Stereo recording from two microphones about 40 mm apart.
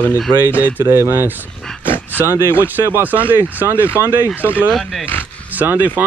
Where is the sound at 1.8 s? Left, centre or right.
Left.